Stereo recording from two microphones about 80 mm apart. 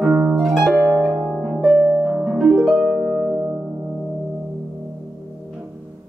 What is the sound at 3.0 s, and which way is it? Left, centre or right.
Music, centre.